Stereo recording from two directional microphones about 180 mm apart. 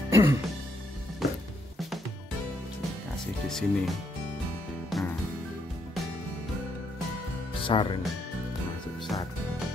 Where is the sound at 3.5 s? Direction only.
Centre (ahead or behind).